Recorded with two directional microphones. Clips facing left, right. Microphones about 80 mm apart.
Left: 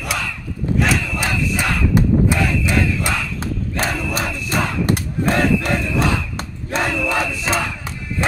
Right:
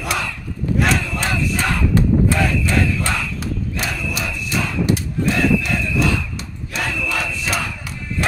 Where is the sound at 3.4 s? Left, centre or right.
Left.